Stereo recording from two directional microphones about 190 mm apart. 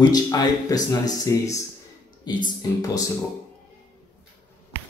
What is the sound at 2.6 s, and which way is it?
Speech, 20° left (ahead or behind).